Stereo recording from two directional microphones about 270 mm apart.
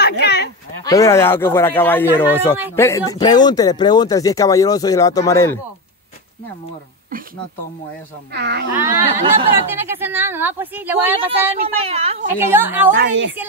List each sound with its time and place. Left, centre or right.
0.2 s a sound: left
0.8 s speech: centre
8.3 s speech: right
8.7 s a woman's voice: centre
11.6 s a woman's voice: right
12.4 s a woman's voice: centre
12.9 s speech: right